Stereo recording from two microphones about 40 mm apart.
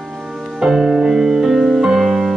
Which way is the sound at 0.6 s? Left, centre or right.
Centre.